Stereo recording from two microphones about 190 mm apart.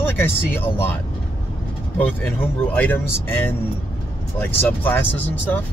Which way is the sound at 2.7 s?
10° left (ahead or behind).